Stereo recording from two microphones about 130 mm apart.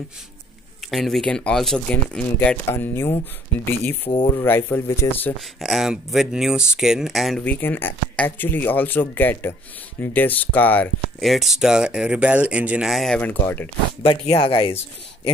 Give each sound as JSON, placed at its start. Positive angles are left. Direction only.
{"t": 0.8, "sound": "speech", "side_deg": 0}
{"t": 5.6, "sound": "speech", "side_deg": 0}
{"t": 7.4, "sound": "speech", "side_deg": 15}
{"t": 11.1, "sound": "speech", "side_deg": 0}
{"t": 13.2, "sound": "speech", "side_deg": 15}
{"t": 14.0, "sound": "speech", "side_deg": 45}